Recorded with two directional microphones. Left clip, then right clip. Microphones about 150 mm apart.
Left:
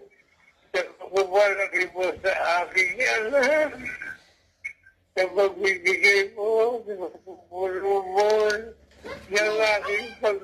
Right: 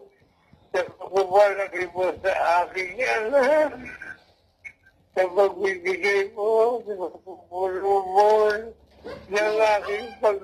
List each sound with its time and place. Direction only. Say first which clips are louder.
0.7 s a man's voice: right 1 dB; 35° left (ahead or behind)
5.1 s a man's voice: right 2 dB; 35° left (ahead or behind)